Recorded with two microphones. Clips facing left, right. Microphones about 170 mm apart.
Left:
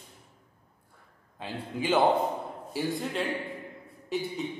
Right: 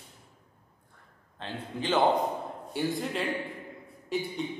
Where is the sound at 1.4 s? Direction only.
10° left (ahead or behind).